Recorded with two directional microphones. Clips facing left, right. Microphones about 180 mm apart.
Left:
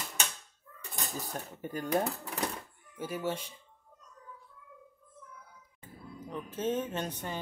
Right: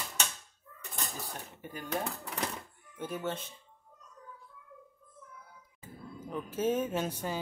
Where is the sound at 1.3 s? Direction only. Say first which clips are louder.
Left 5 dB; 45° left (ahead or behind).